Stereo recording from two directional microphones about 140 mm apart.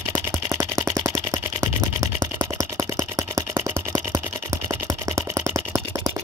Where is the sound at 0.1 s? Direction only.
15° right (ahead or behind).